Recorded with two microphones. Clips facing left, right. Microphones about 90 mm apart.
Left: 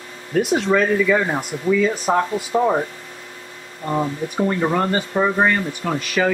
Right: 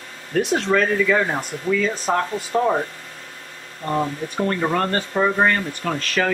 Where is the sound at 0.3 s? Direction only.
10° left (ahead or behind).